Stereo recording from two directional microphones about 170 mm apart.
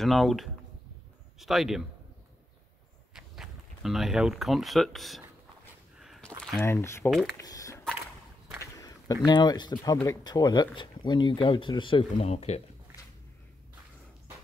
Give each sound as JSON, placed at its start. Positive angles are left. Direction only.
{"t": 0.0, "sound": "speech", "side_deg": 0}
{"t": 3.2, "sound": "speech", "side_deg": 0}
{"t": 5.9, "sound": "a sound", "side_deg": 0}
{"t": 6.6, "sound": "speech", "side_deg": 15}
{"t": 7.3, "sound": "a sound", "side_deg": 20}
{"t": 8.5, "sound": "speech", "side_deg": 20}